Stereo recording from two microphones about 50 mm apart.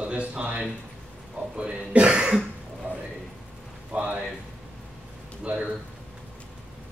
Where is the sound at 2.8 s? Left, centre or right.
Right.